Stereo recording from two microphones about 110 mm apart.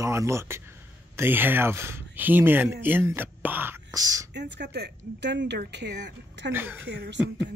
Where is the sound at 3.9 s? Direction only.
35° right (ahead or behind).